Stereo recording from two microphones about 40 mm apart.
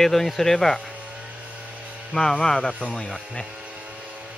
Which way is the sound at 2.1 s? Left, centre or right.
Centre.